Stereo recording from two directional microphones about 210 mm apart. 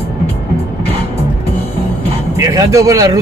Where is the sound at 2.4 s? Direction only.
15° right (ahead or behind).